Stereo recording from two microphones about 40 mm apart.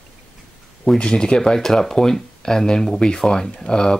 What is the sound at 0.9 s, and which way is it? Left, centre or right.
Speech, centre.